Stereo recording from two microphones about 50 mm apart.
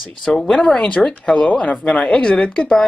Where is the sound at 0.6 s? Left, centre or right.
Centre.